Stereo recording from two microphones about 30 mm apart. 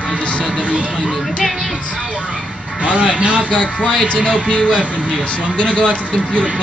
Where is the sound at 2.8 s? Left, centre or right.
Right.